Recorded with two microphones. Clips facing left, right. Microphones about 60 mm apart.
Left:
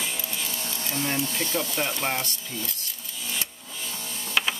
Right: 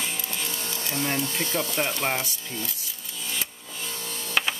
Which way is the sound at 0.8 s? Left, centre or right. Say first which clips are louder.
Even; centre.